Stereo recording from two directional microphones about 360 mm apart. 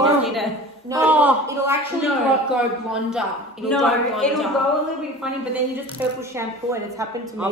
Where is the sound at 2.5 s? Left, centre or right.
Centre.